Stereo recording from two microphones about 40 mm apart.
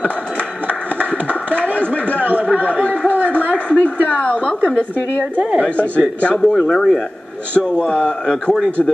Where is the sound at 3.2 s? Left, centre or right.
Left.